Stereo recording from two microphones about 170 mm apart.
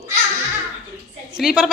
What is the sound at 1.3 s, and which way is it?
Speech, 5° right (ahead or behind).